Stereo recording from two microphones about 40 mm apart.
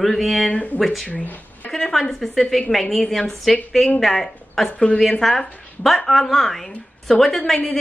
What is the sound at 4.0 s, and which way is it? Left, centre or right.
Speech, centre.